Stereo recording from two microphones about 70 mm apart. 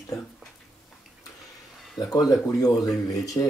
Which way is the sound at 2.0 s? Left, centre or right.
Left.